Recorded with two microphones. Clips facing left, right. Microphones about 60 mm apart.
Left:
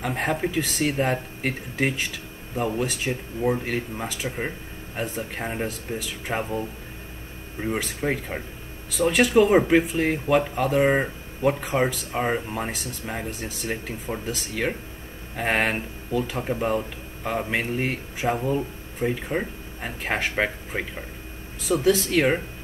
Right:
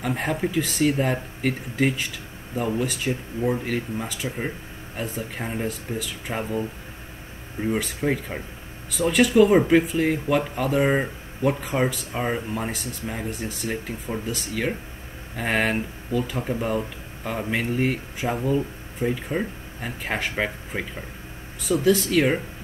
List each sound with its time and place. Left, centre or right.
0.0 s speech: centre
6.3 s speech: centre
9.5 s speech: centre
21.8 s speech: centre
22.1 s speech: centre